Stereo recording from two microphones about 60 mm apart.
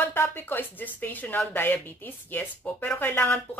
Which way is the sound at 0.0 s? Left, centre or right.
Left.